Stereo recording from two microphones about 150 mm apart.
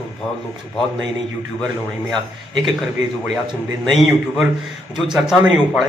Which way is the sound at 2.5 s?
Centre (ahead or behind).